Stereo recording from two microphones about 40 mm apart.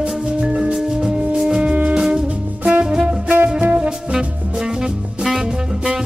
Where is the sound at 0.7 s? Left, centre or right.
Centre.